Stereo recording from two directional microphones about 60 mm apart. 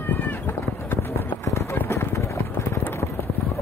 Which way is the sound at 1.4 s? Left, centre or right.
Left.